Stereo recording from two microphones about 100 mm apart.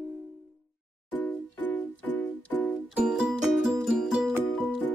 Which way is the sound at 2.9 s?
10° right (ahead or behind).